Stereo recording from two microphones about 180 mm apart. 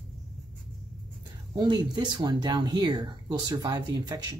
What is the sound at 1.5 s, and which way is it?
Speech, 20° right (ahead or behind).